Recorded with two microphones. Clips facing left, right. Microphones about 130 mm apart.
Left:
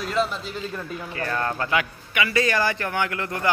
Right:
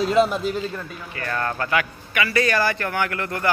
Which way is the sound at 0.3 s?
50° right (ahead or behind).